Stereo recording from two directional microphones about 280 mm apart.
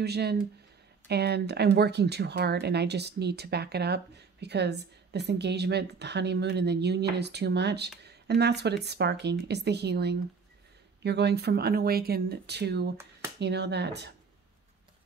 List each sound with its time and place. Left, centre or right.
0.0 s speech: right